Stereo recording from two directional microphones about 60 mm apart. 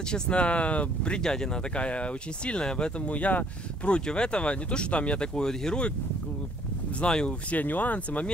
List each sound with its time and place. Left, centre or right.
0.1 s speech: centre
7.0 s speech: centre
7.5 s speech: left